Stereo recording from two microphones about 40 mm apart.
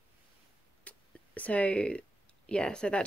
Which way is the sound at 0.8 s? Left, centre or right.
Left.